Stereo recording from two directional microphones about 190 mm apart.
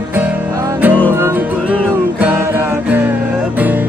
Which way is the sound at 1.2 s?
15° right (ahead or behind).